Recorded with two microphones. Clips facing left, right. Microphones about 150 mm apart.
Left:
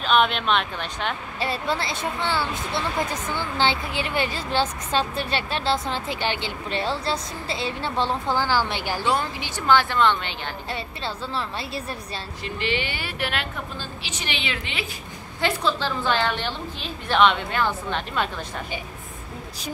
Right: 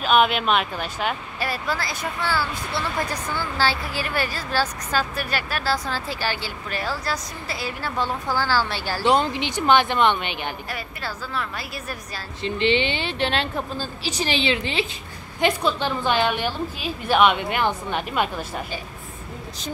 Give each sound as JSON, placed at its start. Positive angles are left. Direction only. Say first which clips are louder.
{"t": 0.0, "sound": "a woman's voice", "louder": "right 2 dB", "side_deg": -5}
{"t": 1.4, "sound": "speech", "louder": "left 2 dB", "side_deg": 25}
{"t": 9.0, "sound": "a woman's voice", "louder": "right 7 dB", "side_deg": -20}
{"t": 10.7, "sound": "speech", "louder": "left 1 dB", "side_deg": 25}
{"t": 12.4, "sound": "a woman's voice", "louder": "right 7 dB", "side_deg": -25}
{"t": 15.4, "sound": "a woman's voice", "louder": "right 2 dB", "side_deg": -15}